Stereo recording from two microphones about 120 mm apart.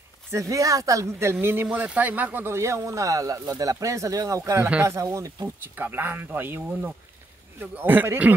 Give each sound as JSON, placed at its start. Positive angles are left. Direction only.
{"t": 0.3, "sound": "speech", "side_deg": -25}